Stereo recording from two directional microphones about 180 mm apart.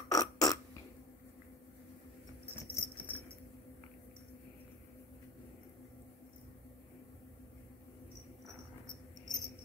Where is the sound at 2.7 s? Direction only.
10° right (ahead or behind).